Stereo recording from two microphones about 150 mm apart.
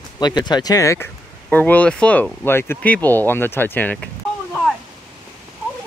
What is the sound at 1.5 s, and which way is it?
Speech, 10° left (ahead or behind).